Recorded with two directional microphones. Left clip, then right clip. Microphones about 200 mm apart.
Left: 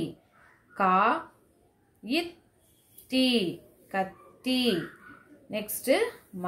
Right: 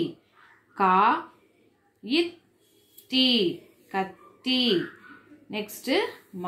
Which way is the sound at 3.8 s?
45° left (ahead or behind).